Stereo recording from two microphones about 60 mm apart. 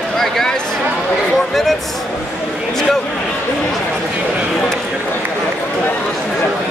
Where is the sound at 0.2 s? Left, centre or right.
Centre.